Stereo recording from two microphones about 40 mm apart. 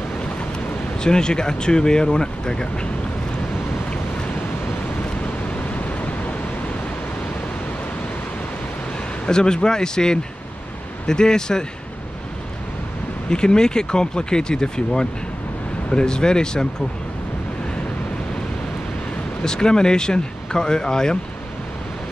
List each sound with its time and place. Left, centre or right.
0.9 s speech: centre
5.6 s a sound: left
9.2 s speech: centre
13.3 s speech: centre
19.4 s speech: centre